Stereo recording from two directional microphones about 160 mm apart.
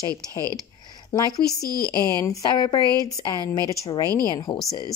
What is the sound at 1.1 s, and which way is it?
A woman's voice, 25° left (ahead or behind).